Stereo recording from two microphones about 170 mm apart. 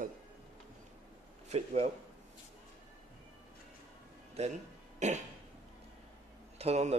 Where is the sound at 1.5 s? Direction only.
40° right (ahead or behind).